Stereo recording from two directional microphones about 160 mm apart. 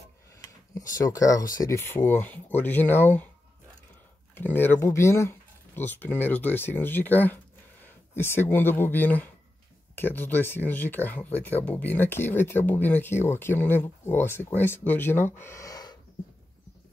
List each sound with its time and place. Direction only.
1.0 s speech: 20° left (ahead or behind)
4.4 s speech: 15° left (ahead or behind)